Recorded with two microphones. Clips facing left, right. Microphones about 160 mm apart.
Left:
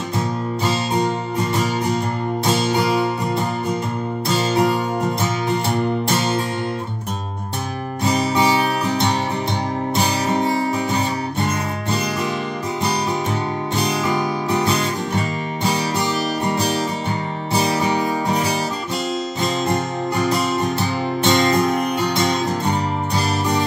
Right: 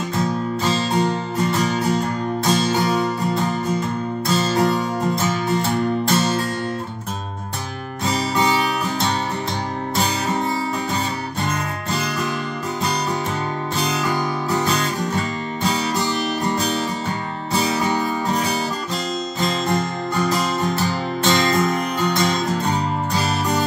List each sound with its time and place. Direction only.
4.4 s music: 10° left (ahead or behind)
21.2 s music: 15° left (ahead or behind)